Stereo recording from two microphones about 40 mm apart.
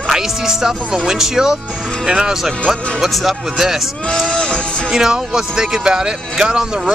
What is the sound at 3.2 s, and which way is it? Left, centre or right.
Speech, centre.